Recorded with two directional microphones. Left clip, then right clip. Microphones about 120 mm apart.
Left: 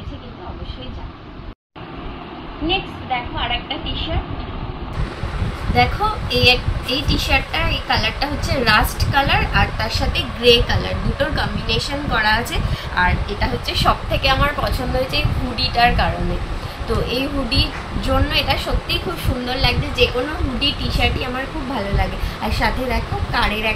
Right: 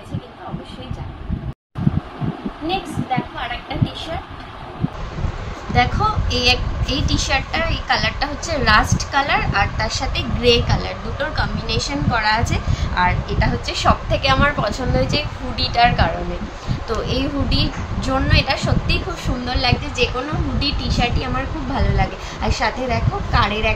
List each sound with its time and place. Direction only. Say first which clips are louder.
6.3 s a woman's voice: left 3 dB; 20° right (ahead or behind)
21.7 s a woman's voice: right 2 dB; 10° right (ahead or behind)